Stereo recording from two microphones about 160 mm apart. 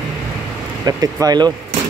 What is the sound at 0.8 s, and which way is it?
Speech, 25° right (ahead or behind).